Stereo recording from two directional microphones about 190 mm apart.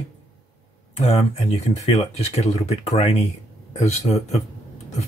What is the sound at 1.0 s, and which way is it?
Speech, 40° left (ahead or behind).